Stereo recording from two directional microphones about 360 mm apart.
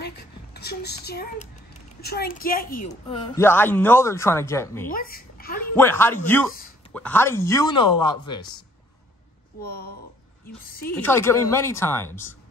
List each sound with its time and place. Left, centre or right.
0.0 s a sound: left
2.0 s a woman's voice: left
3.1 s a man's voice: centre
4.8 s a child's voice: left
5.8 s a man's voice: centre
10.7 s a woman's voice: left
11.0 s a man's voice: centre